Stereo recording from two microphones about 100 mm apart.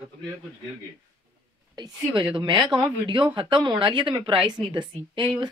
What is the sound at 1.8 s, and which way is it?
Speech, 55° right (ahead or behind).